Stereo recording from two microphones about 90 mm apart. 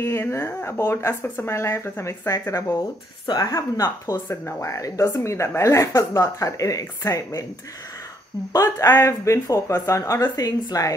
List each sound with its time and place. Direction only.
0.0 s speech: 30° left (ahead or behind)
8.5 s speech: 40° left (ahead or behind)
8.8 s speech: 30° left (ahead or behind)